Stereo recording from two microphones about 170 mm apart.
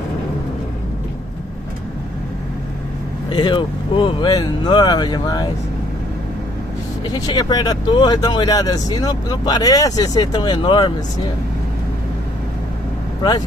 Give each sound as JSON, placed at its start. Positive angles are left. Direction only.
{"t": 3.3, "sound": "speech", "side_deg": 30}
{"t": 7.1, "sound": "speech", "side_deg": 25}